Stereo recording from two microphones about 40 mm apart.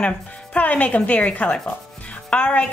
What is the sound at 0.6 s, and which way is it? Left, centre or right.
Speech, left.